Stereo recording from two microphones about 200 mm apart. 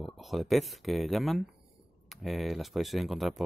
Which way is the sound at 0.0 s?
Centre (ahead or behind).